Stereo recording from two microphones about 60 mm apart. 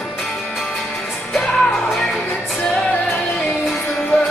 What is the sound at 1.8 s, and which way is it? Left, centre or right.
Music, centre.